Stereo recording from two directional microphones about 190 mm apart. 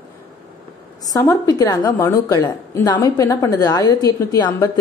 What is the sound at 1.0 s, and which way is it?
A woman's voice, 20° left (ahead or behind).